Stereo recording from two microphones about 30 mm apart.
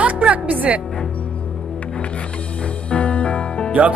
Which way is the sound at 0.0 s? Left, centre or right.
Right.